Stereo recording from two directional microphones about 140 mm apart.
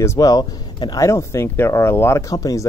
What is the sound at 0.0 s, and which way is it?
Speech, 20° left (ahead or behind).